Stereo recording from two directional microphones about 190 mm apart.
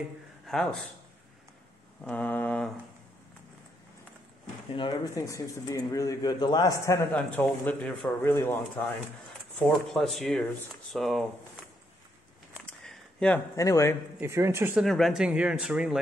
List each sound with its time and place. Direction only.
0.5 s speech: 5° left (ahead or behind)
2.0 s speech: 10° left (ahead or behind)
4.7 s speech: 20° left (ahead or behind)
7.1 s speech: 5° left (ahead or behind)
9.9 s speech: centre (ahead or behind)
12.6 s a sound: 5° left (ahead or behind)
13.6 s speech: 15° left (ahead or behind)
14.2 s speech: 15° right (ahead or behind)
14.9 s speech: centre (ahead or behind)